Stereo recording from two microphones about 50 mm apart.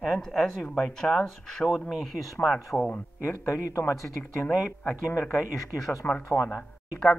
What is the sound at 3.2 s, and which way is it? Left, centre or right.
Speech, left.